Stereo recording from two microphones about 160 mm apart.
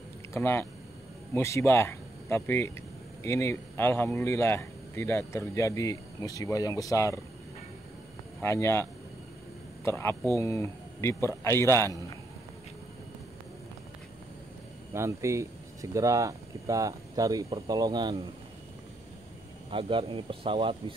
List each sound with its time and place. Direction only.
0.3 s speech: 15° left (ahead or behind)
8.4 s speech: 15° left (ahead or behind)
9.8 s speech: 15° left (ahead or behind)
14.9 s speech: 20° right (ahead or behind)
19.7 s speech: 35° right (ahead or behind)